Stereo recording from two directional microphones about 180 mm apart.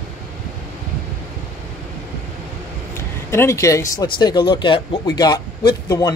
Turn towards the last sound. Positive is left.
turn(degrees=20)  # may be behind; listen again after turning